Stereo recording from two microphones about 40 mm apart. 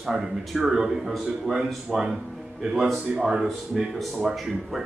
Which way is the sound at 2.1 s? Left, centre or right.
Centre.